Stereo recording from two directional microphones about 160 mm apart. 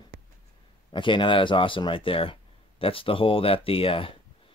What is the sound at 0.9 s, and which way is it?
Speech, 30° left (ahead or behind).